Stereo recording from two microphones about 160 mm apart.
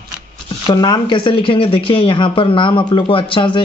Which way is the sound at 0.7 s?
30° left (ahead or behind).